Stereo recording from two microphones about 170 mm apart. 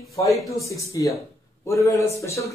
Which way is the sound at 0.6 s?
20° left (ahead or behind).